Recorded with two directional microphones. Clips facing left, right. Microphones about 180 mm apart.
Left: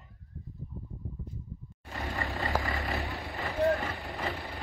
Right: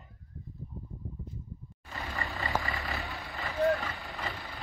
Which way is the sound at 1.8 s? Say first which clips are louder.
Left 3 dB; 40° left (ahead or behind).